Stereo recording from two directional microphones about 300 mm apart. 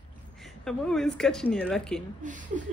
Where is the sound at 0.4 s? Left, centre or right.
Centre.